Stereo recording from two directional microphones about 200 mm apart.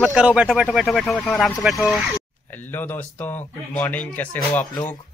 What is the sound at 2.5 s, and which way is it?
Speech, 10° left (ahead or behind).